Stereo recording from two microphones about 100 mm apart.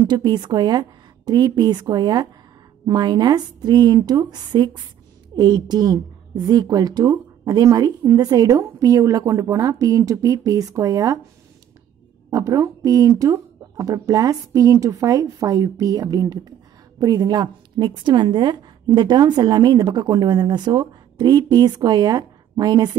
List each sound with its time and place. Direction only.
0.0 s a woman's voice: 45° right (ahead or behind)
12.3 s a woman's voice: 35° right (ahead or behind)